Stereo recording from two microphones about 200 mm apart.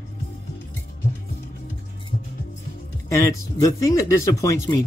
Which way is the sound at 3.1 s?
15° left (ahead or behind).